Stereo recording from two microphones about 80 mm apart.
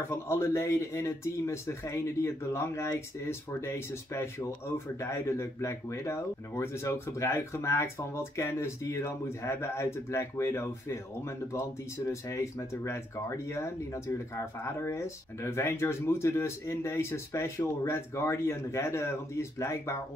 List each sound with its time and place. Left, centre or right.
0.1 s speech: left